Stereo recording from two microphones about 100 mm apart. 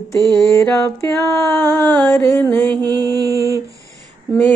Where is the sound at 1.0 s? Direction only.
25° left (ahead or behind).